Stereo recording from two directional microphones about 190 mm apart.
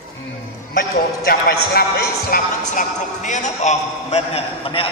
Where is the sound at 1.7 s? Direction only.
50° left (ahead or behind).